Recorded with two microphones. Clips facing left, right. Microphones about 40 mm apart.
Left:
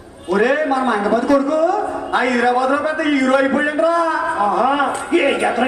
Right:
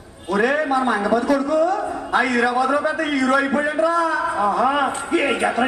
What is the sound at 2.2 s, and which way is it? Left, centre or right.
A man's voice, left.